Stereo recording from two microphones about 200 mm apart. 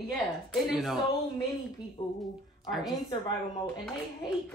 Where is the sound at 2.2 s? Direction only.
Centre (ahead or behind).